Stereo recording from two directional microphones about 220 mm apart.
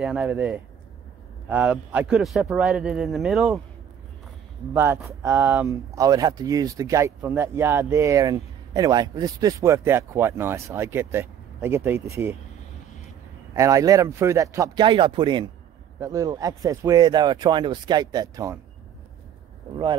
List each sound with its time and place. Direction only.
0.0 s speech: 5° right (ahead or behind)
4.7 s speech: 10° right (ahead or behind)
13.5 s speech: 15° right (ahead or behind)